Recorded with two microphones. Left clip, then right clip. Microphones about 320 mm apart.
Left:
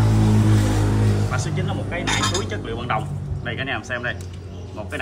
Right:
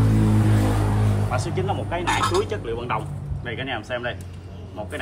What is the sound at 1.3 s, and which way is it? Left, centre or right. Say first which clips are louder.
Speech: right 2 dB; centre.